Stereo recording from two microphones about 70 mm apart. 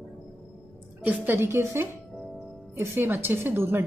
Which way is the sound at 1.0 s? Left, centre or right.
Right.